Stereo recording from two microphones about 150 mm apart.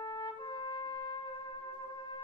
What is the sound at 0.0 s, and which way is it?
Trumpet, 30° left (ahead or behind).